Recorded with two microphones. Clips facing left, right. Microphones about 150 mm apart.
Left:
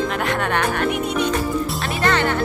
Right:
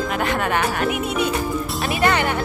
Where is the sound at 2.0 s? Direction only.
15° right (ahead or behind).